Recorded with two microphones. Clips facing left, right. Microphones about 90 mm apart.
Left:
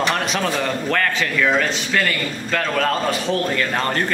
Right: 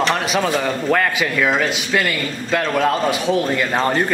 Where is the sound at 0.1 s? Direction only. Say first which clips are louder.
Right 3 dB; 5° right (ahead or behind).